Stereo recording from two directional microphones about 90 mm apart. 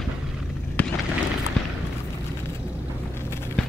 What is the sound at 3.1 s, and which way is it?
Boat, 30° left (ahead or behind).